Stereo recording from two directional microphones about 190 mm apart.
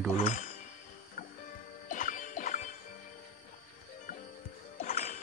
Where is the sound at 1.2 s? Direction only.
45° left (ahead or behind).